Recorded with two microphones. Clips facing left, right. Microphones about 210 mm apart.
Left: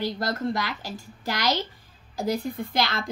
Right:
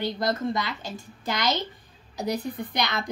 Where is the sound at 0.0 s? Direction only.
20° right (ahead or behind).